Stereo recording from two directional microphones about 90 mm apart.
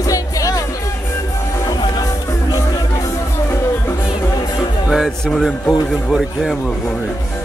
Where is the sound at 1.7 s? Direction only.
50° left (ahead or behind).